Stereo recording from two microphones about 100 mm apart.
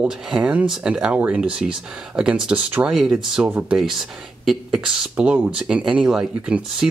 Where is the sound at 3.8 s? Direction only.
5° right (ahead or behind).